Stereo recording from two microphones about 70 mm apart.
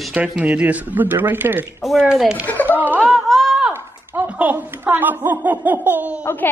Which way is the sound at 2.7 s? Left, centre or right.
Right.